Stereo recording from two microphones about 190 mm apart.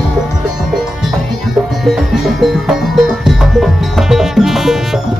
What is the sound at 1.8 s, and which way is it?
Music, centre (ahead or behind).